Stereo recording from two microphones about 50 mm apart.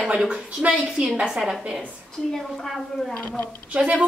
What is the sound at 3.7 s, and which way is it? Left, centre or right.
Speech, right.